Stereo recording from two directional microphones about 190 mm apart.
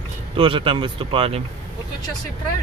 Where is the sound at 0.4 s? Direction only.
25° right (ahead or behind).